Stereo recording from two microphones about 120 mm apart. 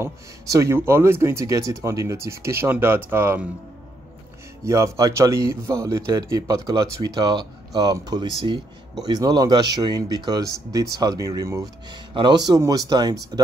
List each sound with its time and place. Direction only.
0.0 s speech: 25° right (ahead or behind)
4.6 s speech: 25° right (ahead or behind)
11.9 s speech: 40° right (ahead or behind)